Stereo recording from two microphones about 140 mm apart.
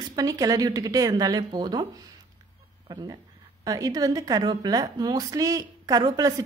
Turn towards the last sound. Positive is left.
turn(degrees=-25)  # may be behind; listen again after turning